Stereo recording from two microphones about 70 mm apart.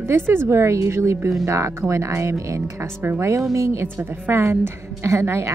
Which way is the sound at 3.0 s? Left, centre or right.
Right.